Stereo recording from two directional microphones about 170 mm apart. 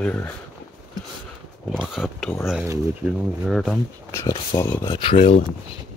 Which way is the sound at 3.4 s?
Centre (ahead or behind).